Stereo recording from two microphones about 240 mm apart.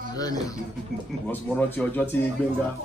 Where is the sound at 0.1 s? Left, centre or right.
Centre.